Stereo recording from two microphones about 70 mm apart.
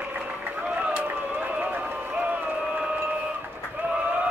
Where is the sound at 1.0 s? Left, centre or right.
Right.